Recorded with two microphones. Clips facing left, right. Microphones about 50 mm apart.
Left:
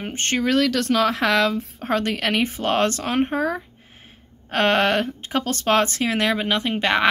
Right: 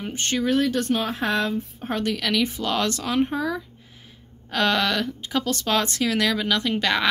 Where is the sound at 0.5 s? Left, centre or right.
Left.